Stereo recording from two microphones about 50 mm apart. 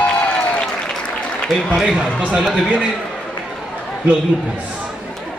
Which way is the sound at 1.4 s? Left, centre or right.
Centre.